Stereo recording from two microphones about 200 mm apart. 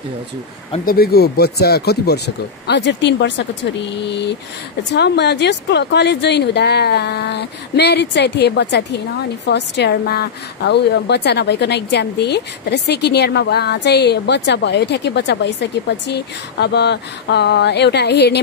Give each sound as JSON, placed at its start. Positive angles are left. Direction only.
{"t": 0.8, "sound": "a woman's voice", "side_deg": 50}